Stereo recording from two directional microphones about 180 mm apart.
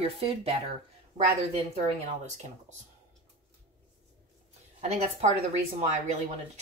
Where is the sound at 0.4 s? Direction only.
35° right (ahead or behind).